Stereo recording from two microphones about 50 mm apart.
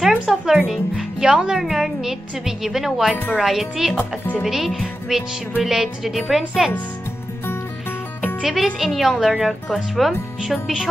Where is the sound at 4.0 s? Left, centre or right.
Left.